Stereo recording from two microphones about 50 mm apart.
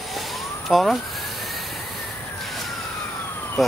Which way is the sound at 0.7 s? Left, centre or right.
Centre.